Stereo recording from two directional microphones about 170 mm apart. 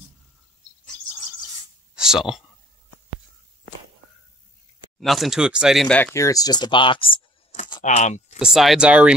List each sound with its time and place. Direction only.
2.0 s speech: 5° right (ahead or behind)
5.0 s speech: centre (ahead or behind)
6.1 s speech: 20° left (ahead or behind)
7.8 s speech: 45° left (ahead or behind)
8.4 s speech: centre (ahead or behind)